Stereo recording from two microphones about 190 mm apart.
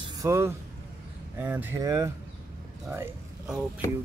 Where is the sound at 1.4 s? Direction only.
10° right (ahead or behind).